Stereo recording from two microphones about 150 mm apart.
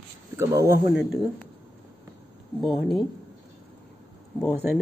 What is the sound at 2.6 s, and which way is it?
Speech, centre (ahead or behind).